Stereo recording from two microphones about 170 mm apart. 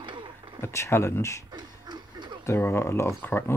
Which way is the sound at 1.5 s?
25° right (ahead or behind).